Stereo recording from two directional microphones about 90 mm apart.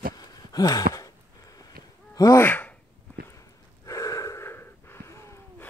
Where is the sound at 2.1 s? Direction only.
40° left (ahead or behind).